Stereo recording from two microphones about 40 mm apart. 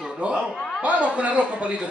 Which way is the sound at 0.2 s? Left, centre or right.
Right.